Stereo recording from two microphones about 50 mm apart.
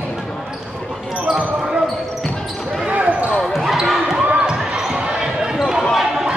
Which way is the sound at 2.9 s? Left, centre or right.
Right.